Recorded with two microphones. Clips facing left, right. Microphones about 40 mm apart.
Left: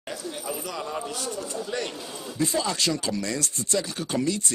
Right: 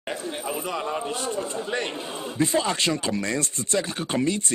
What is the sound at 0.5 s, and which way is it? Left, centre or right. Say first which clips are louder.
Speech: right 4 dB; right.